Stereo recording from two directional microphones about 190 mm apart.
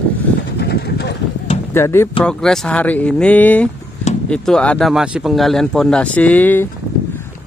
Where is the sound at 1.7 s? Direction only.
15° left (ahead or behind).